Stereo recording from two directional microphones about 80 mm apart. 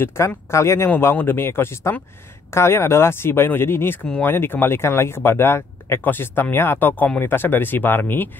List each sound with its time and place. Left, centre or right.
0.2 s speech: left
0.8 s speech: left